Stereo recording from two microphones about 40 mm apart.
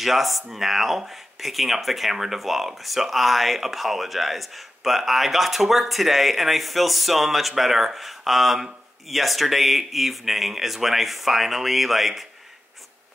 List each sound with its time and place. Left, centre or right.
0.0 s speech: centre